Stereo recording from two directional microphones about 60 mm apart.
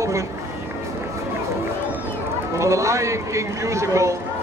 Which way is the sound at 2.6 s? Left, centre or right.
Right.